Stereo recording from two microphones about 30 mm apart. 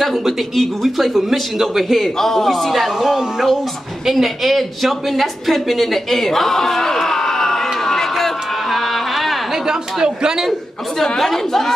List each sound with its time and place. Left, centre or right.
0.0 s a man's voice: centre
2.7 s speech: centre
4.1 s a woman's voice: centre
8.6 s a sound: centre
10.0 s a man's voice: right
11.1 s speech: centre